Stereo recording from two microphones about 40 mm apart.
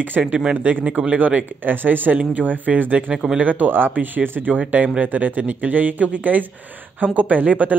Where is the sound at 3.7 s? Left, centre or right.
Right.